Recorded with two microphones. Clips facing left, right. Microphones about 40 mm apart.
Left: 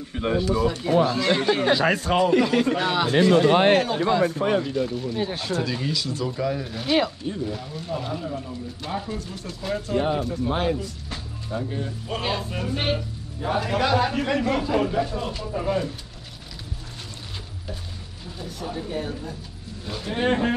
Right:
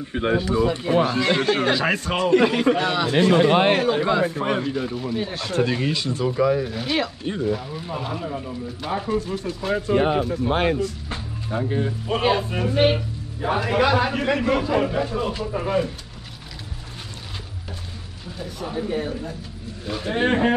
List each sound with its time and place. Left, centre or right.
0.1 s speech: right
1.7 s speech: centre
2.7 s speech: right
3.7 s speech: centre
5.5 s speech: right
6.2 s speech: centre
9.9 s speech: right
10.2 s speech: centre
10.5 s speech: right
11.1 s speech: right
18.4 s speech: centre